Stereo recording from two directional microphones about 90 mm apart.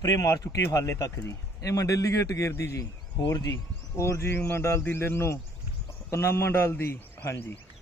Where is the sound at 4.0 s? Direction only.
30° left (ahead or behind).